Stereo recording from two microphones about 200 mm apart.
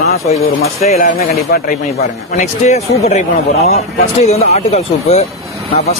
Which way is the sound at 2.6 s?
35° left (ahead or behind).